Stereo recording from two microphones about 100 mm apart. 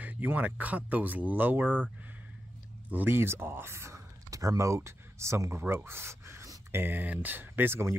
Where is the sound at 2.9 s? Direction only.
20° right (ahead or behind).